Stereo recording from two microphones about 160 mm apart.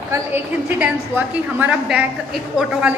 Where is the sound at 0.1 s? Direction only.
15° right (ahead or behind).